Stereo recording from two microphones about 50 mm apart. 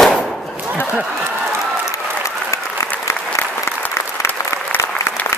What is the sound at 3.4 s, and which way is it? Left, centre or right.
Applause, left.